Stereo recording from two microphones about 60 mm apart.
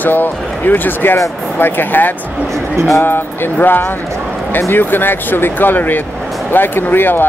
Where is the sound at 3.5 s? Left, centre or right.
Left.